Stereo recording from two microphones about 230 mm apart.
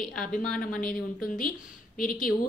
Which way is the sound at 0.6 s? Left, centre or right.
Left.